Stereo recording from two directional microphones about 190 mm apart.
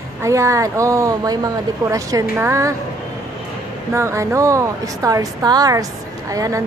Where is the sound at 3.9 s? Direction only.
15° right (ahead or behind).